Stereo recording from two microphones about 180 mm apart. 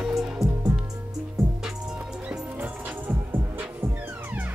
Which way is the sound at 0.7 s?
15° right (ahead or behind).